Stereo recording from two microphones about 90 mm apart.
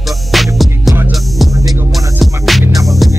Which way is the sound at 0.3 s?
Centre (ahead or behind).